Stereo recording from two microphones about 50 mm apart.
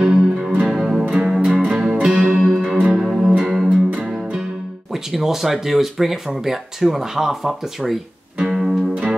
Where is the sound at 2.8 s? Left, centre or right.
Centre.